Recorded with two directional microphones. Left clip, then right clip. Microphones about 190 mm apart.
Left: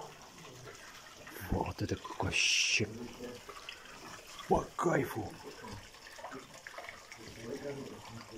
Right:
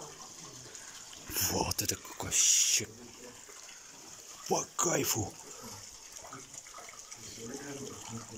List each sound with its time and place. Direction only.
1.4 s speech: 5° left (ahead or behind)
4.5 s speech: 5° left (ahead or behind)